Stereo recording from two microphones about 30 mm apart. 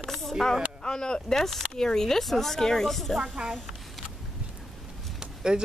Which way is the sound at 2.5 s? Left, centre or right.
Centre.